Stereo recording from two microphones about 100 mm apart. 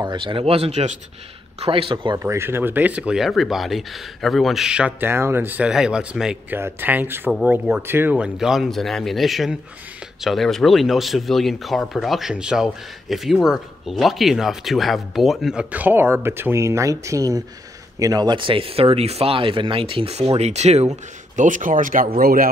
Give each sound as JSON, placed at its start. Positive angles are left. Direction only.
{"t": 0.0, "sound": "speech", "side_deg": -55}
{"t": 1.6, "sound": "speech", "side_deg": -70}
{"t": 2.1, "sound": "speech", "side_deg": -25}
{"t": 5.0, "sound": "speech", "side_deg": -25}
{"t": 5.7, "sound": "speech", "side_deg": -5}
{"t": 6.5, "sound": "speech", "side_deg": -20}
{"t": 8.2, "sound": "speech", "side_deg": -5}
{"t": 15.7, "sound": "speech", "side_deg": -20}